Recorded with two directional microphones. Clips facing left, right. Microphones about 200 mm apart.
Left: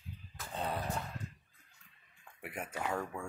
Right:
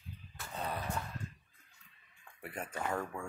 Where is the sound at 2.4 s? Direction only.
10° left (ahead or behind).